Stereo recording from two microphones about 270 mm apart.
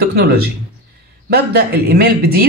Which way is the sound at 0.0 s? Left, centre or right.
Right.